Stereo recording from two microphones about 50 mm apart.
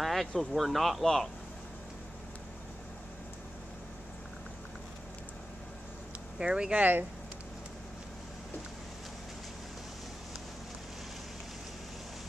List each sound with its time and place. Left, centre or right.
0.0 s a sound: centre
0.4 s speech: centre
6.3 s speech: centre
6.8 s speech: right